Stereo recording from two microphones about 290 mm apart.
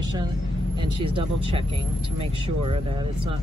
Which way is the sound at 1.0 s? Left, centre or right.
Centre.